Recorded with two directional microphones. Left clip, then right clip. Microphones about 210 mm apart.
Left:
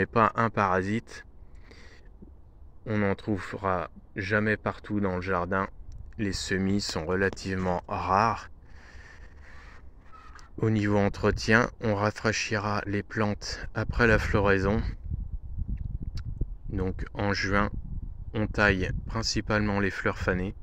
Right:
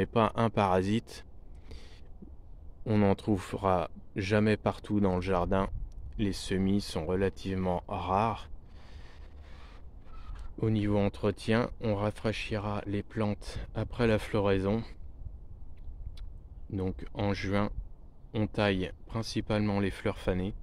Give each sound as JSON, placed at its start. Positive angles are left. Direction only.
{"t": 0.0, "sound": "speech", "side_deg": -5}
{"t": 2.8, "sound": "speech", "side_deg": -20}
{"t": 6.1, "sound": "speech", "side_deg": -5}
{"t": 10.6, "sound": "speech", "side_deg": 10}
{"t": 16.7, "sound": "speech", "side_deg": 0}